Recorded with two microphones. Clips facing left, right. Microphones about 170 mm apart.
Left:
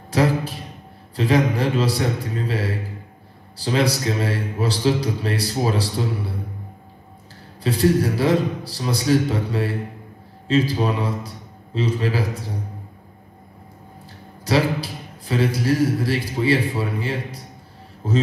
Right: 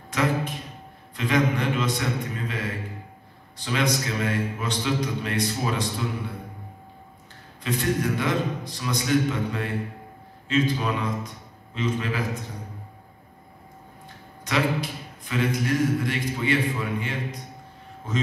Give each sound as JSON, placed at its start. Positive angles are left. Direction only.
{"t": 0.1, "sound": "a sound", "side_deg": 35}
{"t": 1.1, "sound": "a man's voice", "side_deg": 35}
{"t": 7.6, "sound": "a man's voice", "side_deg": 35}
{"t": 14.4, "sound": "a man's voice", "side_deg": 35}